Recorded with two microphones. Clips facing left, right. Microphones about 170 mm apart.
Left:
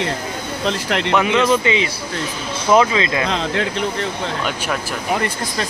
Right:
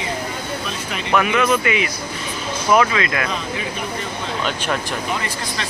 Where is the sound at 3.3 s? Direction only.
90° left.